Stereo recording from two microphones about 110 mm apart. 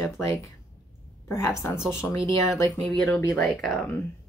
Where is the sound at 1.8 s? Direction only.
25° left (ahead or behind).